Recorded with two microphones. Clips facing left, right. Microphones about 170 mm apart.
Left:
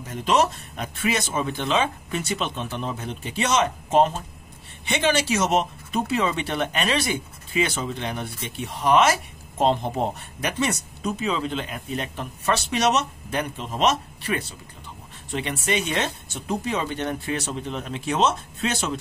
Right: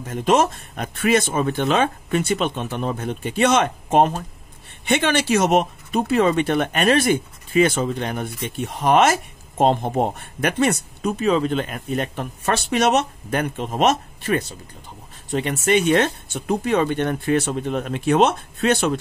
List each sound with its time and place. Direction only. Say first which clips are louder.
0.1 s speech: right 3 dB; 50° right (ahead or behind)